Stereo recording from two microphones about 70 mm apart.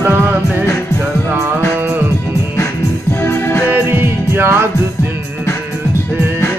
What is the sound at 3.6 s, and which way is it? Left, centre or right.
Music, right.